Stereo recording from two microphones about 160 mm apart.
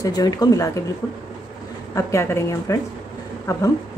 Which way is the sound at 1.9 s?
15° left (ahead or behind).